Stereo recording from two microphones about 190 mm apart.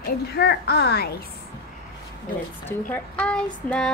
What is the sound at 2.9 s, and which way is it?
Speech, 5° left (ahead or behind).